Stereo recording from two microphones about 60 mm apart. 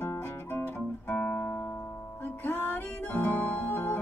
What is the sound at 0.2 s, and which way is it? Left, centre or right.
Music, left.